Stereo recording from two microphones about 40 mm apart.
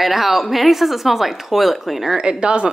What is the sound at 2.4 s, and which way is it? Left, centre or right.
Speech, right.